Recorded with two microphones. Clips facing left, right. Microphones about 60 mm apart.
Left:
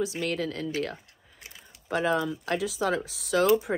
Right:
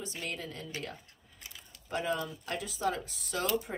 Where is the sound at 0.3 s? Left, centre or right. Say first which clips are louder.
Left 10 dB; left.